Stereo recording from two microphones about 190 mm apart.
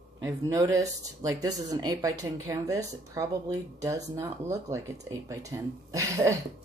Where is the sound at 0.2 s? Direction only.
15° right (ahead or behind).